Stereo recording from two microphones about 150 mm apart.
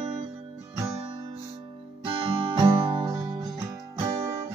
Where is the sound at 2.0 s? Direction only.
35° right (ahead or behind).